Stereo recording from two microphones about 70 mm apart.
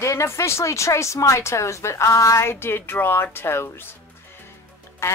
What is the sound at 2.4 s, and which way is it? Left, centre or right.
Speech, left.